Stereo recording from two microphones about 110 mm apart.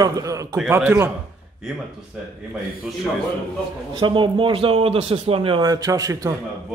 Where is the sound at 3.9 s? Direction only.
45° right (ahead or behind).